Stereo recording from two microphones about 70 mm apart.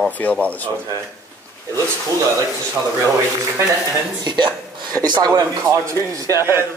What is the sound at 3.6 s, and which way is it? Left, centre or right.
Speech, right.